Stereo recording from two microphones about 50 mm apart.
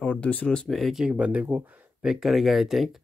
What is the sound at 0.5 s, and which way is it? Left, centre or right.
Speech, centre.